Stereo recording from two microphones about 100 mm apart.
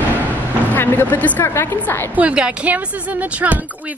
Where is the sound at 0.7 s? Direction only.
20° left (ahead or behind).